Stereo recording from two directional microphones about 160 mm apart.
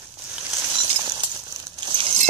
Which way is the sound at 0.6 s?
35° right (ahead or behind).